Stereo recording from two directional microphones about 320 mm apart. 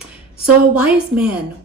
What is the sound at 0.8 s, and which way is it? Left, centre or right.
Speech, centre.